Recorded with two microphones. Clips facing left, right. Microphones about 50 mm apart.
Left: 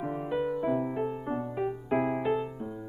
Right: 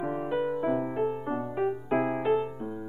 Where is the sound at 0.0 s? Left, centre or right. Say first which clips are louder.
Right 2 dB; centre.